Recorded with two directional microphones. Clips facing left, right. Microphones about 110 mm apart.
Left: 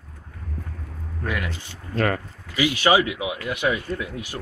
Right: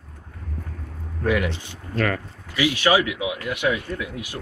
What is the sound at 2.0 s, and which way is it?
Speech, 30° left (ahead or behind).